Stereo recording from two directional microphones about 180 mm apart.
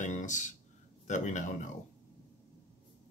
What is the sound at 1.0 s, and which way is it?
Speech, 45° left (ahead or behind).